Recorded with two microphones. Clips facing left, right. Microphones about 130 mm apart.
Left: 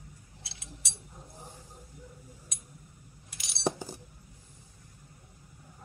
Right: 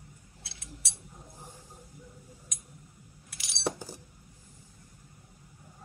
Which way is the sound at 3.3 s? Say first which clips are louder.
Right 1 dB; 5° right (ahead or behind).